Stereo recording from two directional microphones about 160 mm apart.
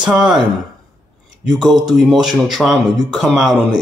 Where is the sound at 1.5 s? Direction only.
5° right (ahead or behind).